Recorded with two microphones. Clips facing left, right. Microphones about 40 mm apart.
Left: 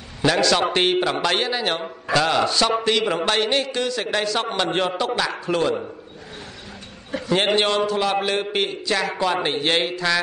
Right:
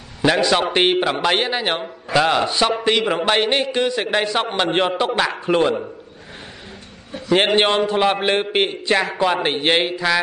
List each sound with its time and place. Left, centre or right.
0.2 s a man's voice: centre
0.7 s music: centre
1.5 s a man's voice: right
2.1 s music: centre
2.8 s a man's voice: centre
7.4 s a man's voice: right; by 10.1 s centre